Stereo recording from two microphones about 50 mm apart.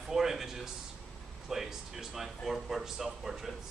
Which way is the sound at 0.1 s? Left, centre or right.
Centre.